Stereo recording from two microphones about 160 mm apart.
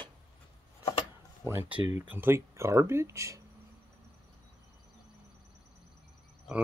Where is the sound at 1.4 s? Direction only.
15° right (ahead or behind).